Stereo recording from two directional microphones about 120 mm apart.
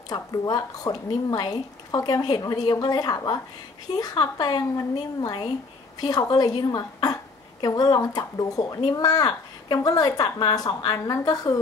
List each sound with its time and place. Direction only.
0.1 s speech: 30° left (ahead or behind)